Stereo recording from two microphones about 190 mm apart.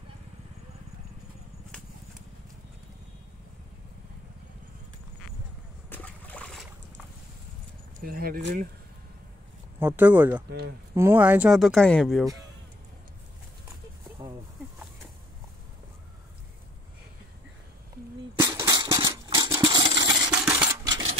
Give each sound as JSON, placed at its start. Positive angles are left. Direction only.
{"t": 5.9, "sound": "boat", "side_deg": 10}
{"t": 8.0, "sound": "speech", "side_deg": -50}
{"t": 9.8, "sound": "speech", "side_deg": -10}
{"t": 18.4, "sound": "coin", "side_deg": -20}